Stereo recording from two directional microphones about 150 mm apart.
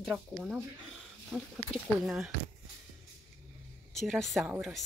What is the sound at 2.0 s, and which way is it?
Speech, centre (ahead or behind).